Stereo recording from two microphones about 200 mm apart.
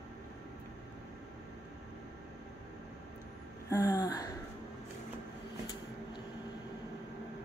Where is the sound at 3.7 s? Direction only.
15° left (ahead or behind).